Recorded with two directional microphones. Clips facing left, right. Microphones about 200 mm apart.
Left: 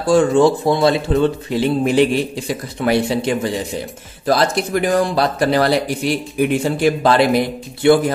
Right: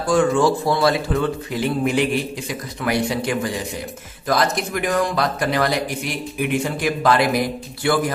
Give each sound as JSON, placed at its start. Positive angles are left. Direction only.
{"t": 0.0, "sound": "speech", "side_deg": 25}